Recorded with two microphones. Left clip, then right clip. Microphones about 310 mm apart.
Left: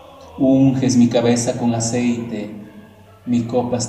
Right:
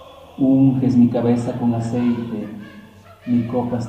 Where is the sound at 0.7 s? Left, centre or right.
Left.